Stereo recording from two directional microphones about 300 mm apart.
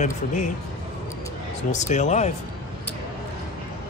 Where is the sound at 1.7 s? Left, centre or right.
Left.